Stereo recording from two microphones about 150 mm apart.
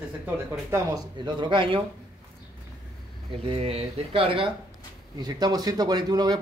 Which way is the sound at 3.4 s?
40° right (ahead or behind).